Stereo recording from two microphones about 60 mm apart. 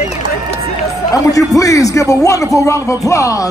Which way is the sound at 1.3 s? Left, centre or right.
Left.